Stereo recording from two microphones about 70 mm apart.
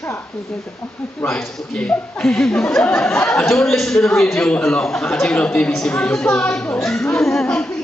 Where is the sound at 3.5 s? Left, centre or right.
Centre.